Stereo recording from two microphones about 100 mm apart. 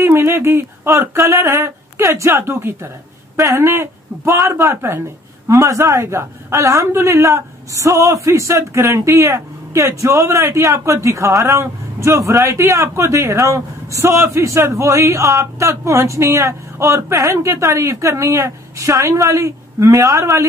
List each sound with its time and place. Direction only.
0.0 s a woman's voice: 25° right (ahead or behind)